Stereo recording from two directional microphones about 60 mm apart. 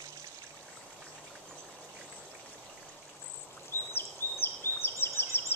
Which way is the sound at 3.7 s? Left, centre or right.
Left.